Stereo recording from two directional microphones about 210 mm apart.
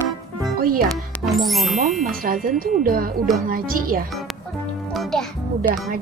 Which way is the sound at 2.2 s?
40° right (ahead or behind).